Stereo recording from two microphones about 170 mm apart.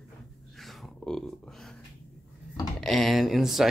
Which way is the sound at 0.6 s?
Centre (ahead or behind).